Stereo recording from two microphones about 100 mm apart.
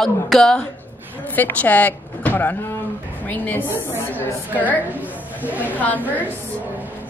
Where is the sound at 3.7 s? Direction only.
25° right (ahead or behind).